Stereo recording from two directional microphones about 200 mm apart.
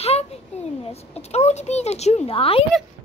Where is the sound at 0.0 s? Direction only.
30° left (ahead or behind).